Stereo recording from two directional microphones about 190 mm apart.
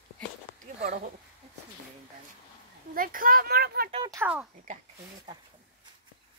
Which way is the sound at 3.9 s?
25° right (ahead or behind).